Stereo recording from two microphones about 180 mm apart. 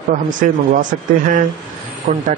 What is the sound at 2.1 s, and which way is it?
Speech, 45° right (ahead or behind).